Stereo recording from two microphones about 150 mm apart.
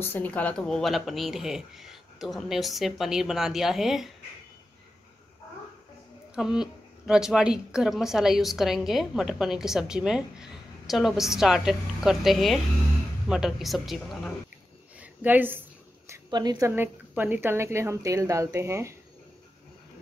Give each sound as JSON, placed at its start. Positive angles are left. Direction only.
{"t": 0.0, "sound": "speech", "side_deg": 15}
{"t": 6.3, "sound": "speech", "side_deg": -5}
{"t": 15.0, "sound": "a sound", "side_deg": -10}
{"t": 16.1, "sound": "a woman's voice", "side_deg": -25}